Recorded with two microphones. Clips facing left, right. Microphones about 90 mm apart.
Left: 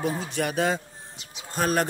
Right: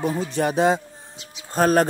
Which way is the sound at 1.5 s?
40° right (ahead or behind).